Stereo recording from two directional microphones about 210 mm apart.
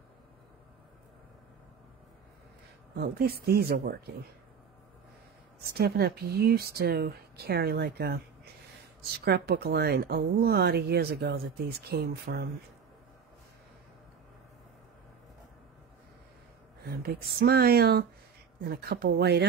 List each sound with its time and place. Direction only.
3.0 s speech: 50° right (ahead or behind)
5.8 s speech: 50° right (ahead or behind)
9.2 s speech: 50° right (ahead or behind)
16.8 s speech: 45° right (ahead or behind)